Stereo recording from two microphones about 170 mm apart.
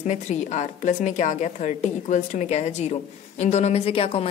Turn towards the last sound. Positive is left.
turn(degrees=35)  # may be behind; listen again after turning